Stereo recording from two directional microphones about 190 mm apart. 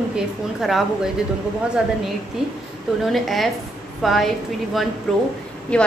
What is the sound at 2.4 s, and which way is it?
A woman's voice, 5° right (ahead or behind).